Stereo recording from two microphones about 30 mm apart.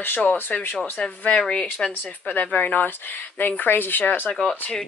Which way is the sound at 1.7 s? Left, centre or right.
Left.